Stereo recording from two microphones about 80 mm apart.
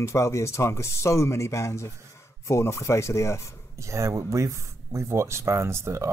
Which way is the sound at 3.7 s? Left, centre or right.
Right.